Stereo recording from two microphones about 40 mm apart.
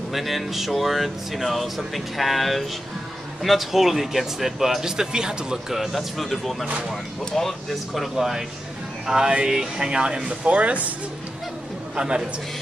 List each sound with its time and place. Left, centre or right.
0.1 s speech: centre
5.7 s speech: centre; by 10.9 s right
11.9 s a man's voice: right